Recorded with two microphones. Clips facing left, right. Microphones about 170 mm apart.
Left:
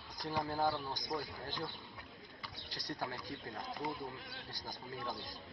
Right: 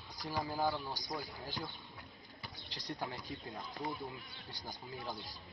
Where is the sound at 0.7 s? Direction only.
Centre (ahead or behind).